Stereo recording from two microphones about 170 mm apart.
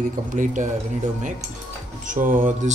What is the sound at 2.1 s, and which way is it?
Speech, 50° right (ahead or behind).